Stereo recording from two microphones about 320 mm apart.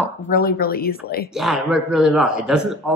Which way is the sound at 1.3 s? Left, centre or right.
Centre.